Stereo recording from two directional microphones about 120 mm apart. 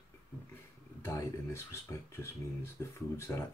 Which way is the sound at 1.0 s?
25° left (ahead or behind).